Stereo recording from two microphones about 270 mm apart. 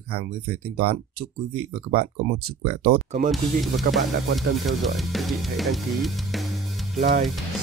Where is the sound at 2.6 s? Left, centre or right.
Right.